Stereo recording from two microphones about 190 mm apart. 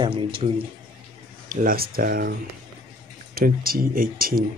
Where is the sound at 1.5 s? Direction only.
45° right (ahead or behind).